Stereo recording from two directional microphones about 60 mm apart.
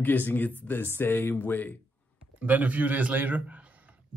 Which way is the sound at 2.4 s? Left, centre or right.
Right.